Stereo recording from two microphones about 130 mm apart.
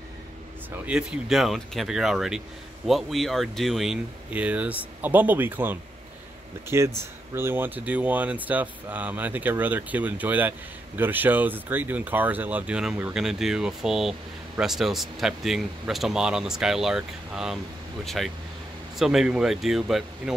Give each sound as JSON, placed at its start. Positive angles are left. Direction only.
{"t": 0.7, "sound": "speech", "side_deg": -10}